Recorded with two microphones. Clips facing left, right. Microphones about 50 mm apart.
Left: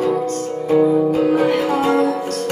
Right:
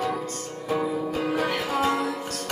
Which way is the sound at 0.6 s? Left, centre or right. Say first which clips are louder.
Left 12 dB; centre.